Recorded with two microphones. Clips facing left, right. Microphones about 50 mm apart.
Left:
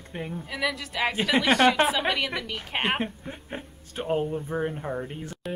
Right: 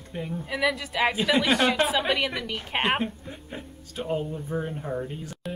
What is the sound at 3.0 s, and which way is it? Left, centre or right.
Speech, left.